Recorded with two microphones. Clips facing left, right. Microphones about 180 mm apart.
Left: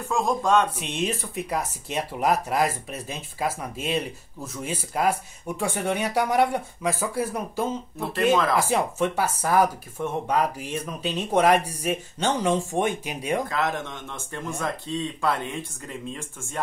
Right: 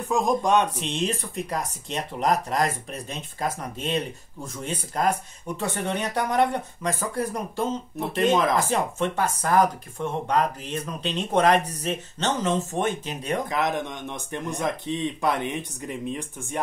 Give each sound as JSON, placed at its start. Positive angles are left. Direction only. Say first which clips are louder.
{"t": 0.1, "sound": "speech", "louder": "right 1 dB", "side_deg": -15}
{"t": 0.7, "sound": "speech", "louder": "right 1 dB", "side_deg": 5}
{"t": 13.5, "sound": "speech", "louder": "right 1 dB", "side_deg": -20}